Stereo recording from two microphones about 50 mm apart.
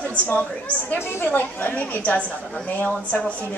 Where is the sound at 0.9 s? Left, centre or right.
Left.